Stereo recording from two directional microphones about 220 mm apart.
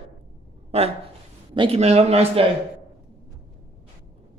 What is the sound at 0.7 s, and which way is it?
Speech, 30° right (ahead or behind).